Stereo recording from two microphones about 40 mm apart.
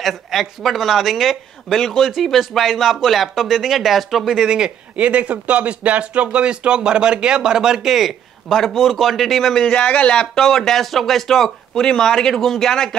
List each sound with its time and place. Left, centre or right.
0.0 s speech: centre
1.7 s speech: centre
2.0 s speech: centre
4.3 s speech: centre
4.9 s speech: right; by 7.9 s centre
7.9 s speech: centre
9.8 s speech: left
10.3 s speech: centre
12.4 s speech: centre